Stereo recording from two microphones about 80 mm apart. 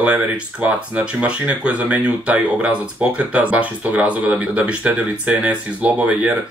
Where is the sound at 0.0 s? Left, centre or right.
Centre.